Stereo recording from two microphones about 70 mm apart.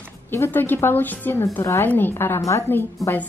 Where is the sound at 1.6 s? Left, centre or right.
Left.